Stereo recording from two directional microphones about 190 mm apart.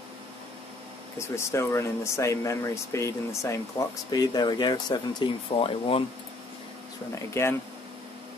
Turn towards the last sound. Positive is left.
turn(degrees=15)  # may be behind; listen again after turning